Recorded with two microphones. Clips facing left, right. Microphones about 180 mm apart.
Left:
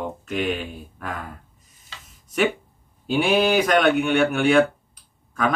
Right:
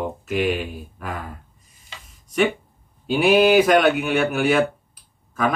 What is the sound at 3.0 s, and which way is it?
A man's voice, centre (ahead or behind).